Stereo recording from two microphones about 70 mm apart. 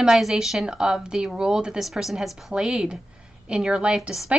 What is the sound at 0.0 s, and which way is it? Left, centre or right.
Speech, centre.